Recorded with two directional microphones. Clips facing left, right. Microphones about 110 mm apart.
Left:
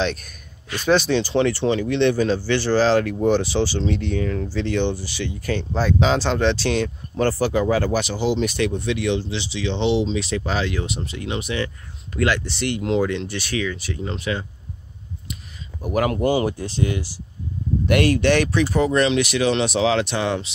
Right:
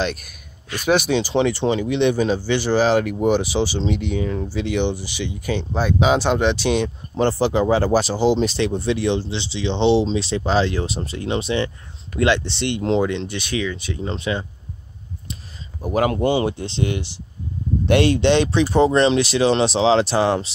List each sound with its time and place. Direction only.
0.0 s speech: 5° right (ahead or behind); by 14.4 s 25° right (ahead or behind)
15.8 s speech: 25° right (ahead or behind)